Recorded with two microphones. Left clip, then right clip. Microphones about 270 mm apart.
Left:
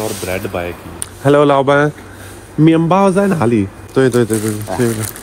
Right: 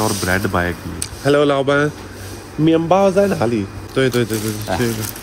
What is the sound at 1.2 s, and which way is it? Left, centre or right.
Speech, centre.